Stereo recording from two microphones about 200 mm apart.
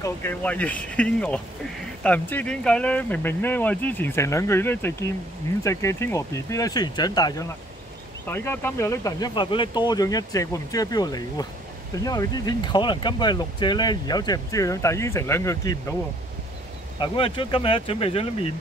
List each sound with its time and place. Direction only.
0.0 s speech: 10° left (ahead or behind)
17.0 s speech: 25° left (ahead or behind)